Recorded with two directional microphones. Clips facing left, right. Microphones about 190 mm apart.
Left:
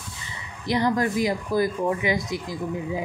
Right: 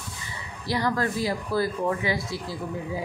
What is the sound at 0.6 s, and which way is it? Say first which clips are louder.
Speech: left 3 dB; 20° left (ahead or behind).